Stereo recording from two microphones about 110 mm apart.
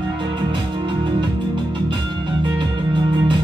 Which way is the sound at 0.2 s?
45° right (ahead or behind).